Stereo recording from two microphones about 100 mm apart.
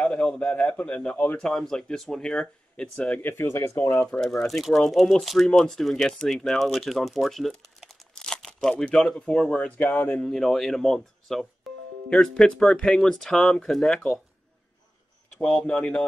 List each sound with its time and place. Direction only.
0.0 s speech: 5° left (ahead or behind)
1.4 s speech: 5° left (ahead or behind); by 4.1 s 30° left (ahead or behind)
4.1 s speech: 5° left (ahead or behind)
9.9 s speech: 20° left (ahead or behind)
10.2 s speech: 5° left (ahead or behind)
11.7 s music: centre (ahead or behind)
12.1 s speech: 5° left (ahead or behind)
15.3 s speech: 5° left (ahead or behind)